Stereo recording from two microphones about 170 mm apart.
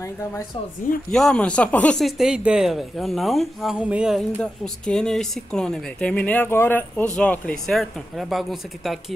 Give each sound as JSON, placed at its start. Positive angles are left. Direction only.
{"t": 1.1, "sound": "speech", "side_deg": 5}